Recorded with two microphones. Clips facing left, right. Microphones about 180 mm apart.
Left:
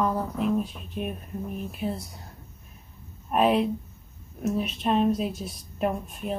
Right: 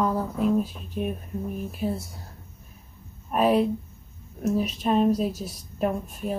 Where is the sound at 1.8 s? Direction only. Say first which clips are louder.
Right 2 dB; centre (ahead or behind).